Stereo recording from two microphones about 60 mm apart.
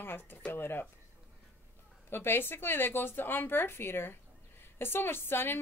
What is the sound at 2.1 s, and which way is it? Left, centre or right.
Speech, left.